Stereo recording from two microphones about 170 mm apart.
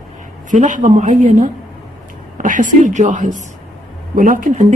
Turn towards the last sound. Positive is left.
turn(degrees=-50)  # may be behind; listen again after turning